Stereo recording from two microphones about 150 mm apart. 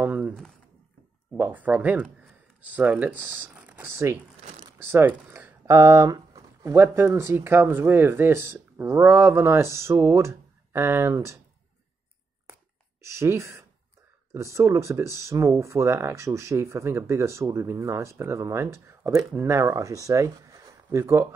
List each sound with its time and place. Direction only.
0.0 s speech: 10° right (ahead or behind)
0.3 s speech: 5° left (ahead or behind)
1.3 s speech: 10° right (ahead or behind)
13.0 s speech: 20° right (ahead or behind)